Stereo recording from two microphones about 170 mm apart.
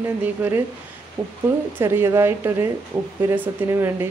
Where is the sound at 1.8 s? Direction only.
15° right (ahead or behind).